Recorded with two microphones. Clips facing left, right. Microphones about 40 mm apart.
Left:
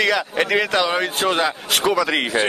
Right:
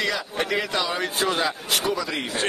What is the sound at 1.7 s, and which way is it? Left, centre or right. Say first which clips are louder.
Speech: left 6 dB; left.